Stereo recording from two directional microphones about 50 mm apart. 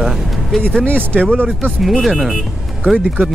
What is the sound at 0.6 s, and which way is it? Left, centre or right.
Speech, centre.